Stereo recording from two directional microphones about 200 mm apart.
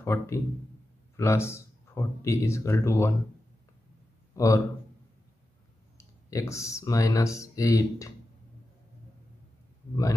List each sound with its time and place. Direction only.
0.0 s speech: 15° left (ahead or behind)
4.4 s speech: 15° left (ahead or behind)
5.9 s speech: 15° left (ahead or behind)